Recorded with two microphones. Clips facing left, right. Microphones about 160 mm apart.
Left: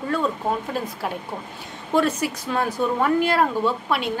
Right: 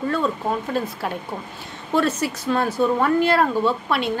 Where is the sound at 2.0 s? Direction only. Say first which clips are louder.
Even; 15° left (ahead or behind).